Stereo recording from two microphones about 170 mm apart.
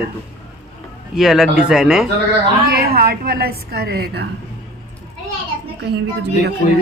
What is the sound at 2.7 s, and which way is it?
A woman's voice, 60° right (ahead or behind).